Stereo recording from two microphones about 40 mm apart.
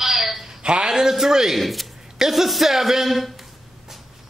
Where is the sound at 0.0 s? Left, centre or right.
Centre.